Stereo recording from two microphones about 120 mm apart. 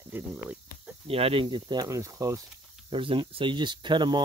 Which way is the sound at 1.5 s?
40° right (ahead or behind).